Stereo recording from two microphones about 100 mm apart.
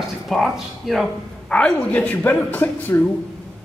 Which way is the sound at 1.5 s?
15° left (ahead or behind).